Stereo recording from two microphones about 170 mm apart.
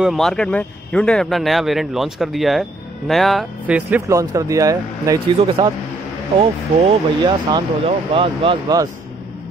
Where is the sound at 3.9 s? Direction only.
15° right (ahead or behind).